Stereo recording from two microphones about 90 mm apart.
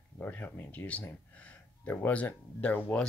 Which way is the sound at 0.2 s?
20° left (ahead or behind).